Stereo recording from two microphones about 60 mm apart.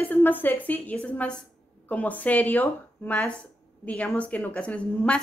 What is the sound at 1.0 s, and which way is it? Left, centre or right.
A woman's voice, centre.